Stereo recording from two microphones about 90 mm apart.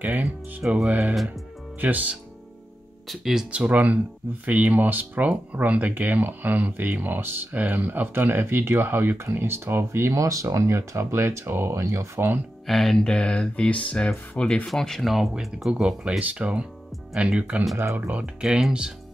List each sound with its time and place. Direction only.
0.0 s speech: 15° right (ahead or behind)
3.1 s speech: 5° right (ahead or behind)
3.5 s speech: 15° right (ahead or behind); by 12.4 s 30° right (ahead or behind)
12.6 s speech: centre (ahead or behind)
17.7 s speech: 20° right (ahead or behind); by 18.9 s 5° right (ahead or behind)